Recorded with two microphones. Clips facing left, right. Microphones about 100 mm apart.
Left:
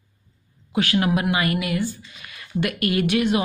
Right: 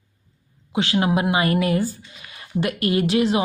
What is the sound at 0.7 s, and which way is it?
Speech, 25° right (ahead or behind).